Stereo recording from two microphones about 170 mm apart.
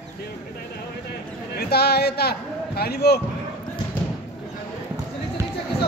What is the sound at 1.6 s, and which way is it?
A man's voice, 70° left (ahead or behind).